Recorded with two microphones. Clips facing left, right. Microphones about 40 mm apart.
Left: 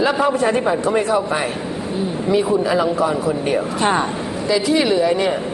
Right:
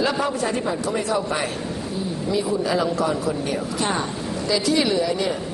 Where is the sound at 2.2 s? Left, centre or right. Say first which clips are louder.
Left 6 dB; left.